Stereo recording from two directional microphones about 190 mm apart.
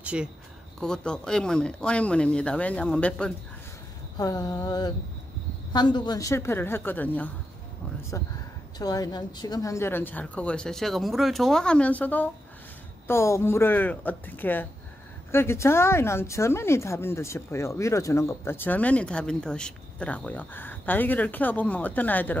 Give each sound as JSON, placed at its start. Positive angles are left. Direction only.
{"t": 0.0, "sound": "speech", "side_deg": -5}
{"t": 4.2, "sound": "a sound", "side_deg": 20}
{"t": 5.7, "sound": "speech", "side_deg": 20}
{"t": 8.7, "sound": "speech", "side_deg": 20}